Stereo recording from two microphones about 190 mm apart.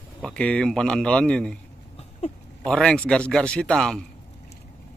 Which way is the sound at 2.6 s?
5° left (ahead or behind).